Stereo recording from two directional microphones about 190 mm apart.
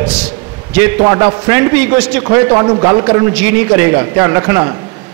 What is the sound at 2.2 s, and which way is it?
A man's voice, 20° right (ahead or behind).